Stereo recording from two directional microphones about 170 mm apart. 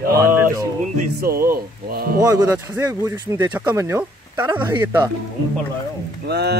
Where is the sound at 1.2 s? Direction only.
60° right (ahead or behind).